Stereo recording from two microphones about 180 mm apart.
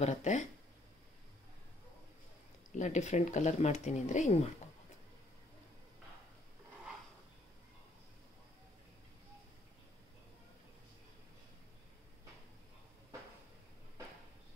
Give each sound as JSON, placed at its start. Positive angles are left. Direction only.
{"t": 0.0, "sound": "speech", "side_deg": 40}
{"t": 2.7, "sound": "speech", "side_deg": 40}